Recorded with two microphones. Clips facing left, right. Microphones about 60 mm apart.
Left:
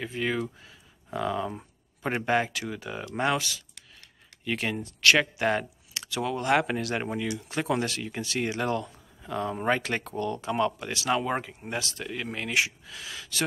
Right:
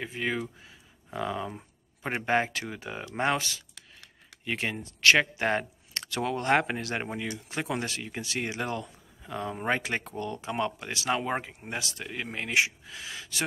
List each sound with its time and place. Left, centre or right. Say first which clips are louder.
0.0 s speech: left 2 dB; centre
2.2 s speech: even; right
5.9 s speech: even; right
7.3 s speech: left 4 dB; centre